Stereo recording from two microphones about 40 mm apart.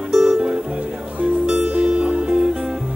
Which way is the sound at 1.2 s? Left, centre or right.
Right.